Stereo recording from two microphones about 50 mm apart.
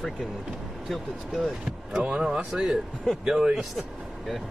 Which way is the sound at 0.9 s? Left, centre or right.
Centre.